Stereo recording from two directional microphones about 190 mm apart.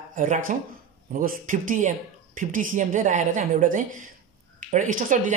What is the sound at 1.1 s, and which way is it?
Speech, 45° right (ahead or behind).